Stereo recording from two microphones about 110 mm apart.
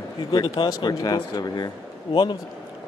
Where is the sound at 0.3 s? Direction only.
40° left (ahead or behind).